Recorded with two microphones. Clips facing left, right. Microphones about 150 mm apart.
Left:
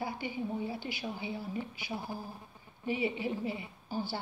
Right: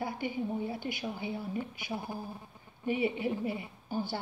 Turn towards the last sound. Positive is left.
turn(degrees=-50)  # may be behind; listen again after turning